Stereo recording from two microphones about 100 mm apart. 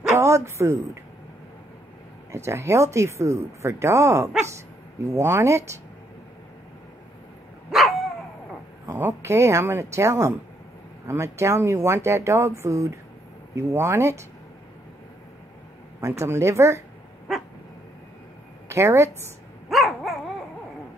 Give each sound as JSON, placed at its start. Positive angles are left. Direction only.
{"t": 0.1, "sound": "a sound", "side_deg": -30}
{"t": 2.3, "sound": "speech", "side_deg": -25}
{"t": 7.7, "sound": "dog", "side_deg": -5}
{"t": 8.9, "sound": "speech", "side_deg": -25}
{"t": 16.0, "sound": "speech", "side_deg": -30}
{"t": 17.3, "sound": "dog", "side_deg": -5}
{"t": 18.7, "sound": "a woman's voice", "side_deg": -25}
{"t": 19.7, "sound": "dog", "side_deg": 0}